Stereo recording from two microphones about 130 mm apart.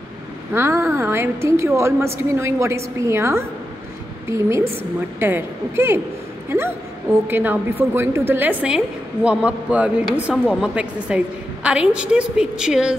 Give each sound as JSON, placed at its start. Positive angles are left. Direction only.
{"t": 0.5, "sound": "a woman's voice", "side_deg": -20}
{"t": 7.2, "sound": "a woman's voice", "side_deg": -15}